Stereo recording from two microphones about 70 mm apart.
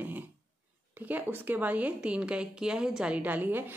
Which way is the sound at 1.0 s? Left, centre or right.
Right.